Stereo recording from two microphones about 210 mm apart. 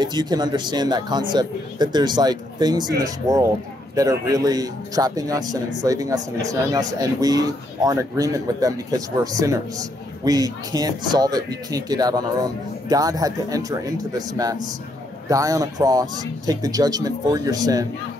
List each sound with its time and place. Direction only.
0.0 s speech: 20° right (ahead or behind)